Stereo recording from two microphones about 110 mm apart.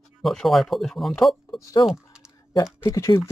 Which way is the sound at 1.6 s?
30° left (ahead or behind).